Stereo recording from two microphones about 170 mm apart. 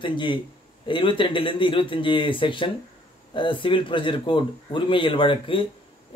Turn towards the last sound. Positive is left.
turn(degrees=30)  # may be behind; listen again after turning